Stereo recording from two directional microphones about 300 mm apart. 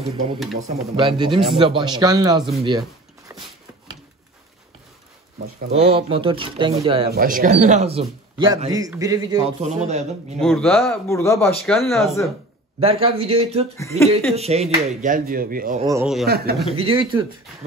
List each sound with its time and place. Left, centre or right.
0.6 s speech: centre
3.3 s a sound: centre
5.7 s a man's voice: centre
10.4 s speech: centre
12.8 s a man's voice: centre
13.7 s speech: centre
14.3 s a man's voice: right
15.9 s speech: centre
16.3 s a man's voice: right
16.7 s speech: centre